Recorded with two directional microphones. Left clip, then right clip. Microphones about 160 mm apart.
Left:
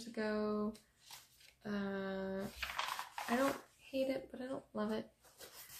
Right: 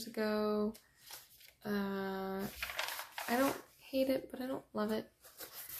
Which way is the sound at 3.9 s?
25° right (ahead or behind).